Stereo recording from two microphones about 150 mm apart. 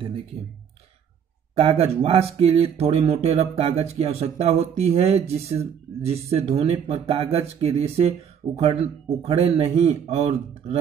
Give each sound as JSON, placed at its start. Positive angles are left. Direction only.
{"t": 1.5, "sound": "speech", "side_deg": -40}